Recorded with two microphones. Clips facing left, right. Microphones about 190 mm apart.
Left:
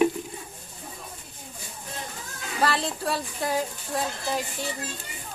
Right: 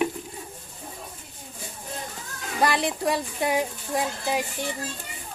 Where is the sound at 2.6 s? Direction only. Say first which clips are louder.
Right 2 dB; 15° right (ahead or behind).